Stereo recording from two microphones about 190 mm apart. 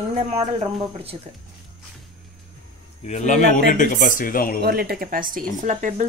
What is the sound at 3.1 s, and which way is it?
Speech, 40° left (ahead or behind).